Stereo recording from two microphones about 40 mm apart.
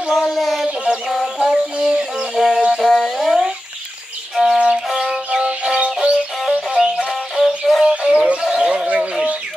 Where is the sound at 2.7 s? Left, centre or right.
Centre.